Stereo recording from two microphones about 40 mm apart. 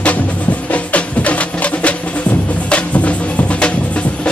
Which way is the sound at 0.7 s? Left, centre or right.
Left.